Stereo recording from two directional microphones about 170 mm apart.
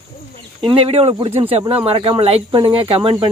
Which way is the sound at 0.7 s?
35° right (ahead or behind).